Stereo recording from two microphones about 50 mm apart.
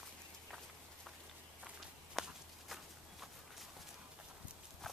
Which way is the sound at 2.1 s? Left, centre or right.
Centre.